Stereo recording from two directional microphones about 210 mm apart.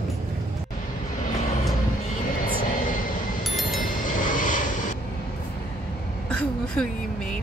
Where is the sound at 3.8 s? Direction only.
40° left (ahead or behind).